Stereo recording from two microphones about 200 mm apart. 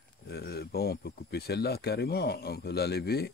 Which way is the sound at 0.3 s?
55° left (ahead or behind).